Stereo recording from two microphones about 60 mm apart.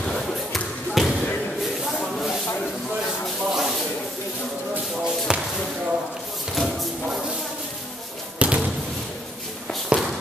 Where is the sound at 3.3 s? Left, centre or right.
Centre.